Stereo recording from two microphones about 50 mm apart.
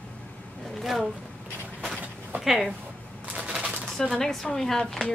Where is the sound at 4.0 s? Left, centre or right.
Centre.